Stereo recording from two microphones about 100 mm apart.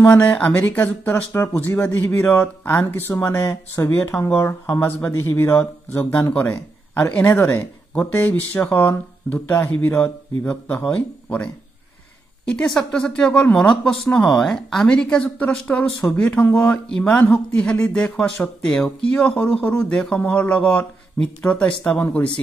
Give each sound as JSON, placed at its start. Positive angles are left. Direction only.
{"t": 0.0, "sound": "speech", "side_deg": 15}
{"t": 12.5, "sound": "speech", "side_deg": 5}